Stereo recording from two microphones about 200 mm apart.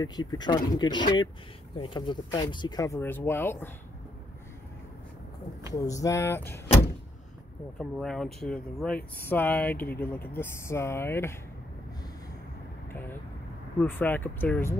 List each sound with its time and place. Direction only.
0.0 s speech: 20° left (ahead or behind)
5.8 s speech: 15° left (ahead or behind)
7.8 s speech: centre (ahead or behind)
13.7 s speech: 10° left (ahead or behind)